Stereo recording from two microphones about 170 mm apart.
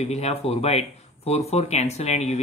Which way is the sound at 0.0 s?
40° left (ahead or behind).